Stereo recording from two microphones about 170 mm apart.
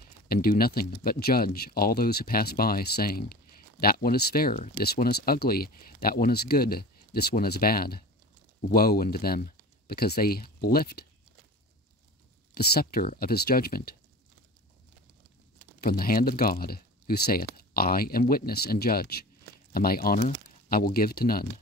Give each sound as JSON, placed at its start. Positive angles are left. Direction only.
{"t": 0.3, "sound": "speech", "side_deg": 60}
{"t": 12.5, "sound": "speech", "side_deg": 65}
{"t": 15.8, "sound": "speech", "side_deg": 60}